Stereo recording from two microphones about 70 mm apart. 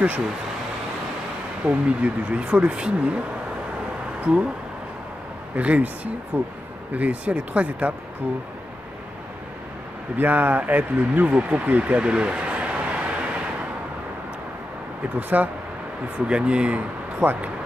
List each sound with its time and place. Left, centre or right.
1.7 s speech: centre
4.2 s speech: centre
5.6 s a man's voice: centre
10.1 s a man's voice: right
15.1 s a man's voice: right